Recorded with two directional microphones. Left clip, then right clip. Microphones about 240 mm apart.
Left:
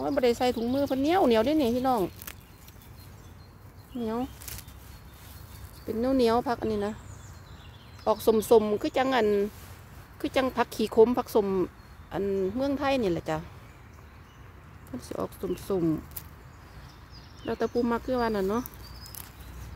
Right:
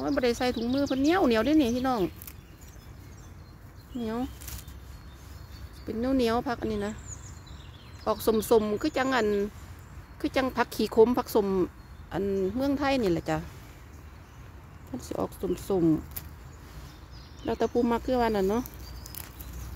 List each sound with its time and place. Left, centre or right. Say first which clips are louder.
0.0 s speech: left 2 dB; centre
4.0 s speech: left 1 dB; centre
5.9 s speech: left 2 dB; centre
8.0 s speech: left 2 dB; centre
15.0 s speech: right 2 dB; centre
17.4 s speech: right 1 dB; centre